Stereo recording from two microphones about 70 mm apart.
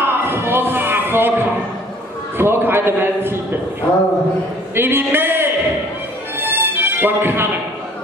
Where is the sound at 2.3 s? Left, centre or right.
Right.